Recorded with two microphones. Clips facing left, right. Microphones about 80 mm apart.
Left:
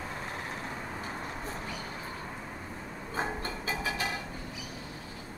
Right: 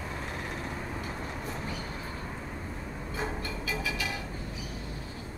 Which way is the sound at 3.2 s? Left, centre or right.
Left.